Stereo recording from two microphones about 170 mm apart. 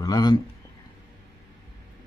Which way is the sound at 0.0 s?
25° left (ahead or behind).